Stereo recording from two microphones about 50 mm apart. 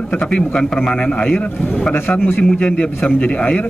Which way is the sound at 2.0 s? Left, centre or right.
Left.